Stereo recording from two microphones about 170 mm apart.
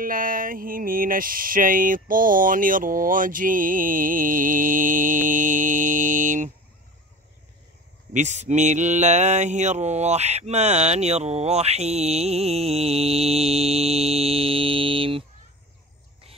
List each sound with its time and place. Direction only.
0.0 s mantra: 55° right (ahead or behind)
8.1 s mantra: 45° right (ahead or behind)